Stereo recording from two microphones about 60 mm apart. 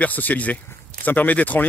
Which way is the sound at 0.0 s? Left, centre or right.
Left.